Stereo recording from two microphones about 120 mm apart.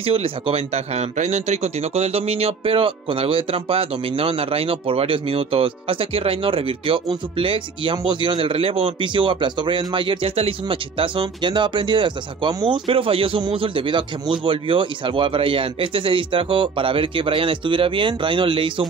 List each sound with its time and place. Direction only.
0.0 s speech: 50° right (ahead or behind)